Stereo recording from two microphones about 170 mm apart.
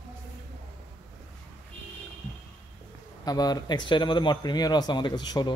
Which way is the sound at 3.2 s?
25° left (ahead or behind).